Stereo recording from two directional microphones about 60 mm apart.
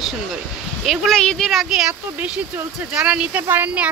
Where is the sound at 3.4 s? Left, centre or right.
Right.